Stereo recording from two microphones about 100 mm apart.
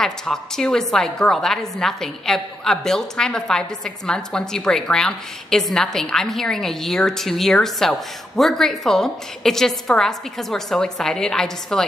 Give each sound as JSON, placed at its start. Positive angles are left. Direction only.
{"t": 0.0, "sound": "a woman's voice", "side_deg": 5}